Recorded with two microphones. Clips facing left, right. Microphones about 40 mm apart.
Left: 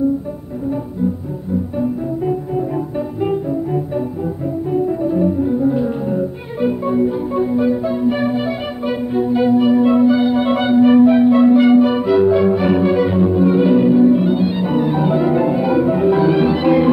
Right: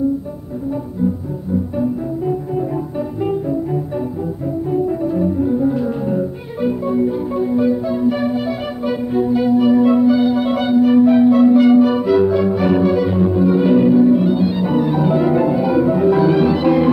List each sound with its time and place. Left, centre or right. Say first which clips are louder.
1.8 s music: even; centre
6.6 s music: left 1 dB; centre
13.7 s music: right 1 dB; centre